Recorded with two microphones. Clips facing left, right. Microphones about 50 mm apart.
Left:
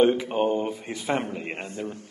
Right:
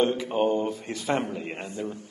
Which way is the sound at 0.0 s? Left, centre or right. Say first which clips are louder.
Left 3 dB; centre.